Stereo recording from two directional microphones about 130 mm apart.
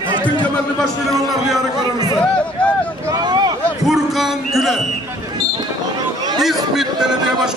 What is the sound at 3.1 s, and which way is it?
Speech, 30° right (ahead or behind).